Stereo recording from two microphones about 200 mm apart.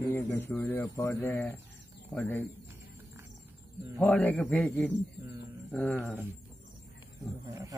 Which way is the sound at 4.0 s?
10° left (ahead or behind).